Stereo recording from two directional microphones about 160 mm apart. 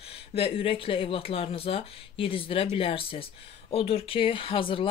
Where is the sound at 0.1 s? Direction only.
35° left (ahead or behind).